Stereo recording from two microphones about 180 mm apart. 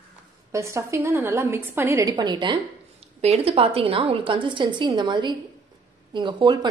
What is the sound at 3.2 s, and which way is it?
A woman's voice, 35° right (ahead or behind).